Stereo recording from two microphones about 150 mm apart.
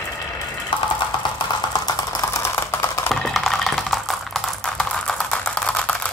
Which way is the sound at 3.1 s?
Centre (ahead or behind).